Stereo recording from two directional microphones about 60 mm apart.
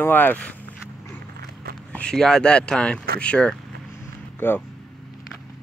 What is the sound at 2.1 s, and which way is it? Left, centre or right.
Speech, centre.